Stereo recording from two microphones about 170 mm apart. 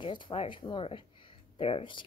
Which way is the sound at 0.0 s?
30° left (ahead or behind).